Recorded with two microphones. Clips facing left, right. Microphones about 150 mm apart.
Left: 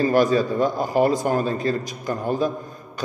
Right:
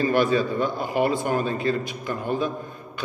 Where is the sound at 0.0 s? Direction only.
40° left (ahead or behind).